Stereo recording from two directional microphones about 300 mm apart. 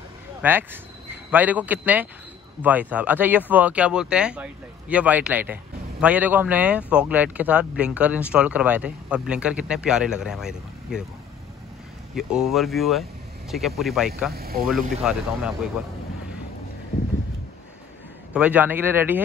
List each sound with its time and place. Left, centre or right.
0.4 s speech: centre
12.2 s speech: centre
14.3 s speech: right
14.7 s speech: centre
18.3 s speech: centre